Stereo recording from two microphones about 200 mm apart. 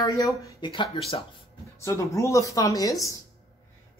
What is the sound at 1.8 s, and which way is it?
Speech, 15° left (ahead or behind).